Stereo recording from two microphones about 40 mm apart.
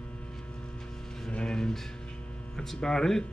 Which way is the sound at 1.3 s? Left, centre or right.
Centre.